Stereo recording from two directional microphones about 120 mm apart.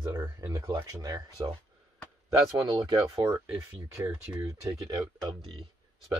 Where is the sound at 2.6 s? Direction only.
40° right (ahead or behind).